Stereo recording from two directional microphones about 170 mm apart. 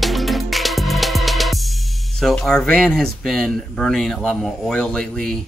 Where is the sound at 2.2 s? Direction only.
5° left (ahead or behind).